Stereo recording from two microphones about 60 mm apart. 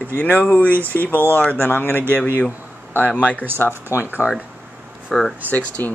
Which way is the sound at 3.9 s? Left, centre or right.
Left.